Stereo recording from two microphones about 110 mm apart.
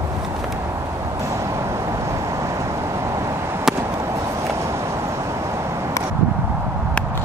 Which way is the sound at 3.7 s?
25° right (ahead or behind).